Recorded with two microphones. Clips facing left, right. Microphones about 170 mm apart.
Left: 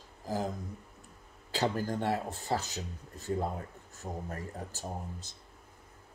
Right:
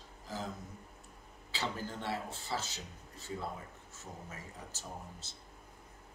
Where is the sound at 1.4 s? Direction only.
45° left (ahead or behind).